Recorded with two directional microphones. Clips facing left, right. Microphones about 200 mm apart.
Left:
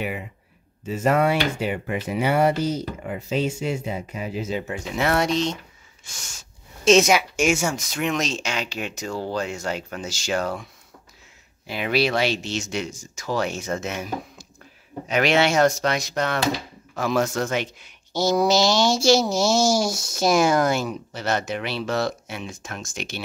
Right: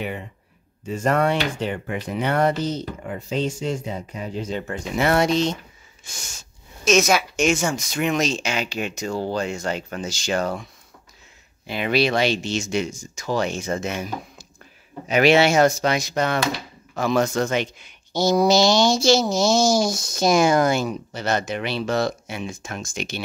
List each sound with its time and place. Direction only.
0.9 s speech: 5° left (ahead or behind)
6.8 s a woman's voice: 30° left (ahead or behind)
7.1 s speech: 10° left (ahead or behind)